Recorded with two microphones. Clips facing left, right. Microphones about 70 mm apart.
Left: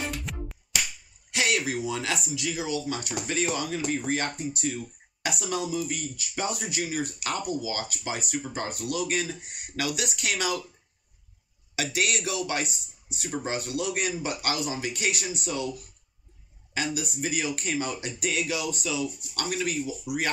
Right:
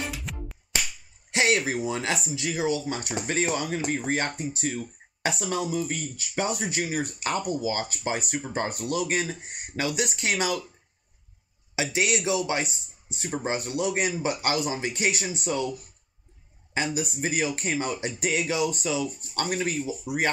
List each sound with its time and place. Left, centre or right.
0.0 s music: centre
1.3 s a sound: right
1.7 s speech: right
5.2 s speech: right
10.3 s speech: right
11.7 s a man's voice: right
16.8 s speech: right